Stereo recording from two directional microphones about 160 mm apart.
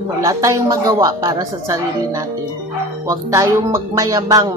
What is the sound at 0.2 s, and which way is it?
A woman's voice, 20° right (ahead or behind).